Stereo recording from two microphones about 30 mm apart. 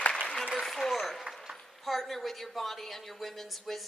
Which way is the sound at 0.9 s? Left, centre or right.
Centre.